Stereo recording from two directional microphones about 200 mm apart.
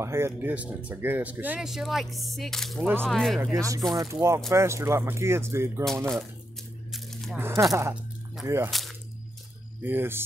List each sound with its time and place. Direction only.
0.0 s speech: 10° right (ahead or behind)
3.3 s speech: 10° right (ahead or behind)
6.9 s a sound: centre (ahead or behind)
7.3 s speech: 10° right (ahead or behind)
8.6 s speech: centre (ahead or behind)
9.8 s speech: 10° right (ahead or behind)